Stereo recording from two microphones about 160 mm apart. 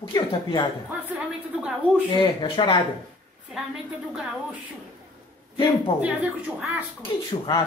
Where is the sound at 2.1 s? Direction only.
30° left (ahead or behind).